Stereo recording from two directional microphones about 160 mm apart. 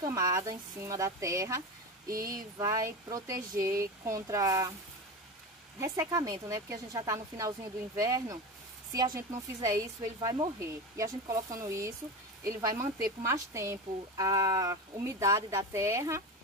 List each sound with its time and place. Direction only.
0.0 s speech: 20° right (ahead or behind)
2.1 s a sound: 65° right (ahead or behind)
2.6 s speech: 20° right (ahead or behind)
5.8 s speech: 20° right (ahead or behind)